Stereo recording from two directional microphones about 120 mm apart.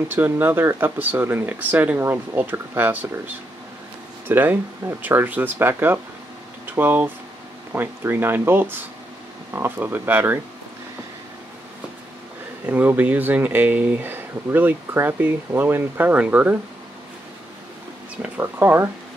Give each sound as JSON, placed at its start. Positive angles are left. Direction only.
{"t": 0.1, "sound": "speech", "side_deg": -15}
{"t": 4.3, "sound": "speech", "side_deg": -20}
{"t": 12.6, "sound": "speech", "side_deg": -15}
{"t": 18.4, "sound": "speech", "side_deg": -20}